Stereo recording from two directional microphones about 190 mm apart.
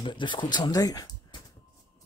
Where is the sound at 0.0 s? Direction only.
25° left (ahead or behind).